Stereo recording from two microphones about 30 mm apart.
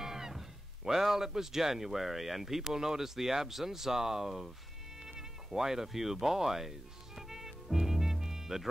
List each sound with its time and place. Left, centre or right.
0.0 s speech: centre
5.0 s insect: centre